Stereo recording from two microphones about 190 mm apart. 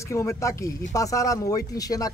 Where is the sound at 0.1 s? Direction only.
15° left (ahead or behind).